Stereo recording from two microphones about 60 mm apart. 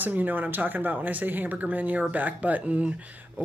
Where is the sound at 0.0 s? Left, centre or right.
Right.